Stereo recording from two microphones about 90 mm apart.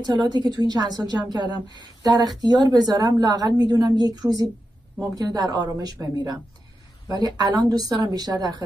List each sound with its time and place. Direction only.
0.0 s a woman's voice: 55° right (ahead or behind)